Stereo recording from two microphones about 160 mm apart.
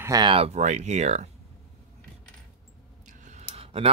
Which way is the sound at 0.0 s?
25° right (ahead or behind).